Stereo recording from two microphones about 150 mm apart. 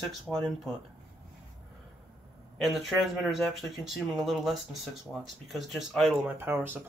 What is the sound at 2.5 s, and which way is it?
Speech, centre (ahead or behind).